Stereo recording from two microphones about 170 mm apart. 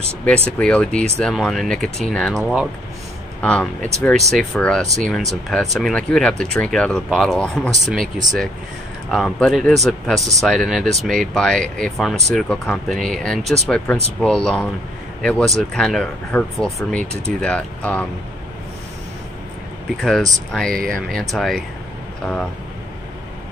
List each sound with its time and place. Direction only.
0.6 s speech: 5° left (ahead or behind)
3.3 s speech: 5° left (ahead or behind)
7.7 s speech: 45° right (ahead or behind)
9.1 s speech: centre (ahead or behind)
20.0 s speech: centre (ahead or behind)